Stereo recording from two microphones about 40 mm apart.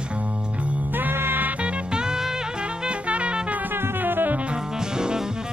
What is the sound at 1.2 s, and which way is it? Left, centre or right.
Music, right.